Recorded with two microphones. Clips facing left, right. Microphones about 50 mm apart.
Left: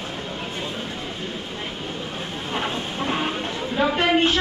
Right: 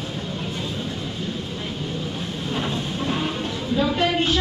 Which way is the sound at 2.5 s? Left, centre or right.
Left.